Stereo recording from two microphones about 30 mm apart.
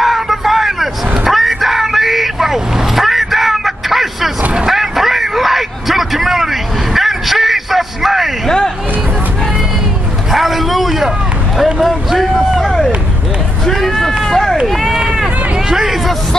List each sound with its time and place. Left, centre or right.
0.0 s vehicle: centre
4.6 s a sound: centre
8.5 s hubbub: centre
10.3 s vehicle: centre
11.5 s a sound: centre
13.7 s run: centre
15.7 s hubbub: centre